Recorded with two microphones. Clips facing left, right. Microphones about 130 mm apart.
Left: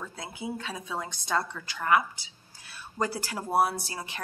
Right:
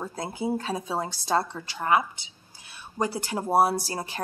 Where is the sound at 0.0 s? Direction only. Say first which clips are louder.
Right 7 dB; 40° right (ahead or behind).